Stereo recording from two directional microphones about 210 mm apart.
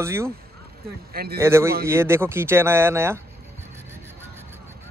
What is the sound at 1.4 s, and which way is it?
Speech, 10° right (ahead or behind).